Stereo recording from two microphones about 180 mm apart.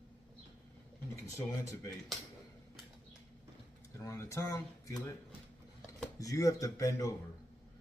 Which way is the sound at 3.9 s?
15° left (ahead or behind).